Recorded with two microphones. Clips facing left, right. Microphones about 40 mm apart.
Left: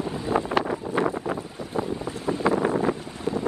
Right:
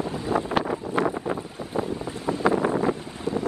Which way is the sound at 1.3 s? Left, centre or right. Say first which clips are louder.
Even; left.